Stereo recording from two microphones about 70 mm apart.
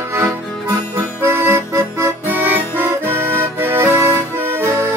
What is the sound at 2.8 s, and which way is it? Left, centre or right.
Accordion, right.